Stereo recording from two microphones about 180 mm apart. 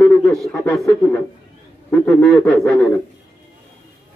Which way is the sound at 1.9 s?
10° left (ahead or behind).